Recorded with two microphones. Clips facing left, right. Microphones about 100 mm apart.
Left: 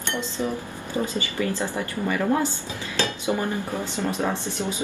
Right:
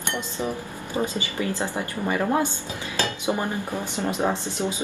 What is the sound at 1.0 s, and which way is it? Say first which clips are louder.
Speech: left 1 dB; 20° right (ahead or behind).